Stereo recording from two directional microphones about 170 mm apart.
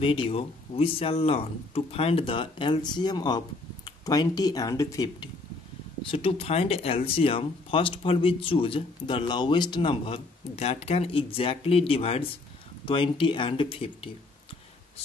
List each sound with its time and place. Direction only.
0.0 s speech: 30° left (ahead or behind)
6.0 s speech: 35° left (ahead or behind)